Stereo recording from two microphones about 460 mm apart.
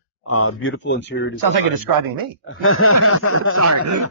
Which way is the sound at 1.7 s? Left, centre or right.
Right.